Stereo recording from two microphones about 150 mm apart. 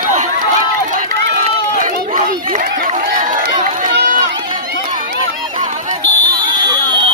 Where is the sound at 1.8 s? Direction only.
65° right (ahead or behind).